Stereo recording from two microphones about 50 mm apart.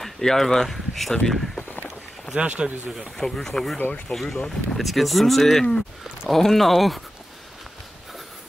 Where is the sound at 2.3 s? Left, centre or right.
Right.